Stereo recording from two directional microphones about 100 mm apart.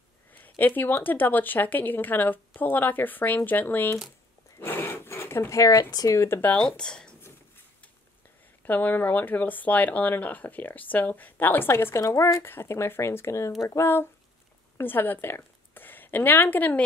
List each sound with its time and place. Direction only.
0.3 s speech: 20° left (ahead or behind)
6.8 s speech: 10° left (ahead or behind)
8.6 s a woman's voice: 15° left (ahead or behind)